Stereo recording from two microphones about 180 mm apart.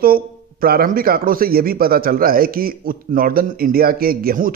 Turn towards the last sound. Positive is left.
turn(degrees=-55)  # may be behind; listen again after turning